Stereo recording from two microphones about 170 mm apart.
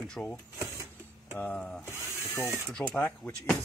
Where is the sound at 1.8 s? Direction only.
15° right (ahead or behind).